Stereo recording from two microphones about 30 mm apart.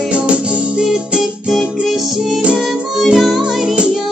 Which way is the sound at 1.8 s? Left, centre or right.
Centre.